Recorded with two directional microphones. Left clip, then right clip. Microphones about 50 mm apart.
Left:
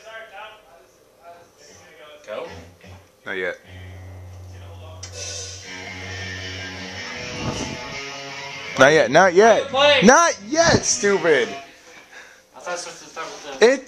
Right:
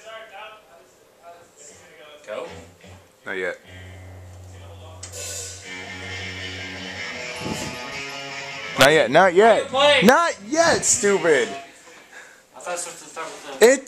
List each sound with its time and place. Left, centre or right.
2.3 s a sound: centre
3.3 s speech: centre
5.1 s music: centre
5.7 s music: right
8.7 s a man's voice: centre
9.6 s speech: centre
10.1 s speech: left
10.6 s speech: right
11.0 s speech: right
11.2 s speech: centre
12.1 s a sound: centre
12.6 s speech: centre
13.6 s speech: right